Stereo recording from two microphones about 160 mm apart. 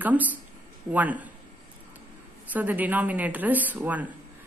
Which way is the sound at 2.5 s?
10° right (ahead or behind).